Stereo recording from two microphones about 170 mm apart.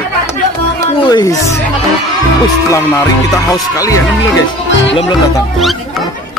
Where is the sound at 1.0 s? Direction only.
25° left (ahead or behind).